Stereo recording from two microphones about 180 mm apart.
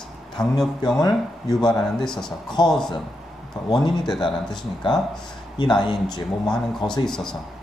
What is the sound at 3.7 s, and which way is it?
Speech, 25° left (ahead or behind).